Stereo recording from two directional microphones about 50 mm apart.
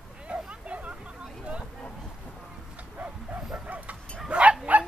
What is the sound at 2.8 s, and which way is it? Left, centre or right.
Bow-wow, right.